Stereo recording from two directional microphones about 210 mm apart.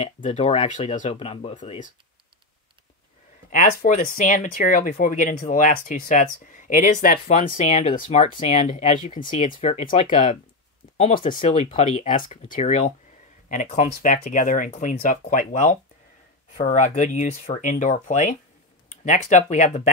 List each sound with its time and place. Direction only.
0.0 s speech: 30° left (ahead or behind)
3.4 s speech: 40° left (ahead or behind)